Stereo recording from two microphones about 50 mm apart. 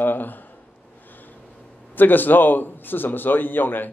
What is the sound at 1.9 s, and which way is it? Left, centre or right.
A man's voice, left.